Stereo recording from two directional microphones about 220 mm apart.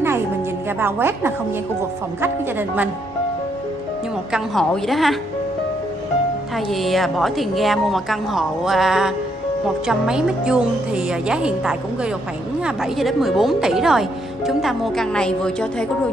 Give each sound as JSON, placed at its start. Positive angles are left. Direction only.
{"t": 0.7, "sound": "a woman's voice", "side_deg": -10}
{"t": 4.3, "sound": "speech", "side_deg": 0}
{"t": 6.5, "sound": "speech", "side_deg": 0}